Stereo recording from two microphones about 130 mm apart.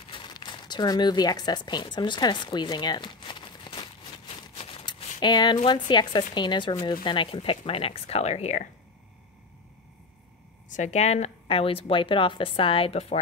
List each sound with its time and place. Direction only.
0.1 s speech: 35° left (ahead or behind)
4.6 s a sound: 45° left (ahead or behind)
5.2 s speech: 35° left (ahead or behind); by 8.6 s 60° left (ahead or behind)
10.7 s a woman's voice: 65° left (ahead or behind); by 13.2 s 50° left (ahead or behind)